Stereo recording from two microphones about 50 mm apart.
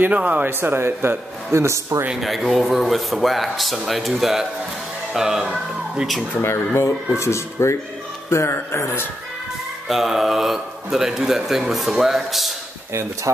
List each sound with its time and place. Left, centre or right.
0.1 s speech: right
0.5 s speech: right
1.5 s a man's voice: right
2.2 s speech: centre
6.4 s speech: left
9.8 s speech: centre